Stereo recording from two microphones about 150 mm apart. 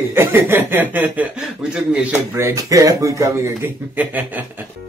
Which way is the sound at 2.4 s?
20° right (ahead or behind).